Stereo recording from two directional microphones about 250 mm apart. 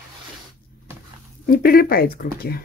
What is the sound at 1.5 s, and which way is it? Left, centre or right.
Speech, left.